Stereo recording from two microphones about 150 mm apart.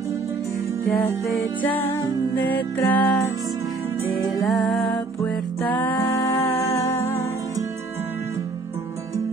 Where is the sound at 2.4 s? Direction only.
10° left (ahead or behind).